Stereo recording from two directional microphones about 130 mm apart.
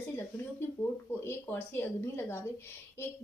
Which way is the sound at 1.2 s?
15° left (ahead or behind).